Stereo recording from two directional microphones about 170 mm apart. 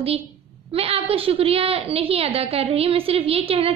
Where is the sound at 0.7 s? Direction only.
35° right (ahead or behind).